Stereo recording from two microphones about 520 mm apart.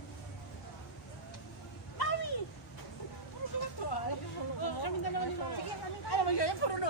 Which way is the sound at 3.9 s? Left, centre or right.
Left.